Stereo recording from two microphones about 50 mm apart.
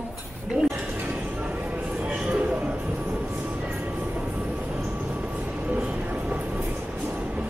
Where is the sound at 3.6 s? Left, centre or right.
Right.